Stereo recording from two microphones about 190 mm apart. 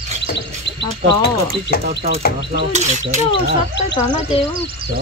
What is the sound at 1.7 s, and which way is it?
Speech, 55° left (ahead or behind).